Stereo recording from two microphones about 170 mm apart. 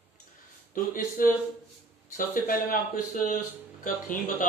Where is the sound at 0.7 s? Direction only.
50° left (ahead or behind).